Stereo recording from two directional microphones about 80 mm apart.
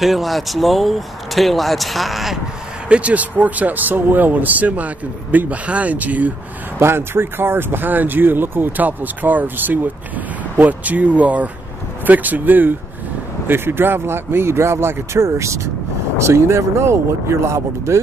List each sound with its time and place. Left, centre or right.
0.0 s speech: centre
2.9 s speech: centre
6.8 s speech: right